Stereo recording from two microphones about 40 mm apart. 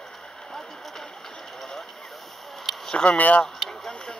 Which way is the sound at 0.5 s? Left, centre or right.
Centre.